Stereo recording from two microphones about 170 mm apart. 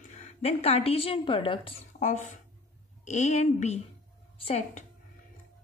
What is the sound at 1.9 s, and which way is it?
A woman's voice, 45° left (ahead or behind).